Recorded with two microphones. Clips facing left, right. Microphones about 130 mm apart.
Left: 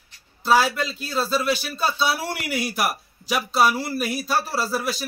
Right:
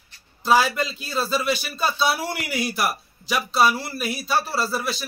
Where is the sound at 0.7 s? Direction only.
10° right (ahead or behind).